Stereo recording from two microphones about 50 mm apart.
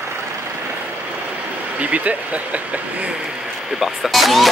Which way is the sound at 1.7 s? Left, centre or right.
Right.